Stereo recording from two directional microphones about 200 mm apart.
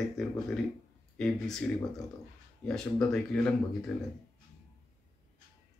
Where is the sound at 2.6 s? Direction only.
5° left (ahead or behind).